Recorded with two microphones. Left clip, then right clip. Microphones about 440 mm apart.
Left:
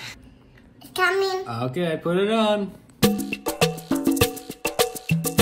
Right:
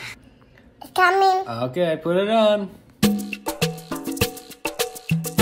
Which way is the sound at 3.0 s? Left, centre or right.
Left.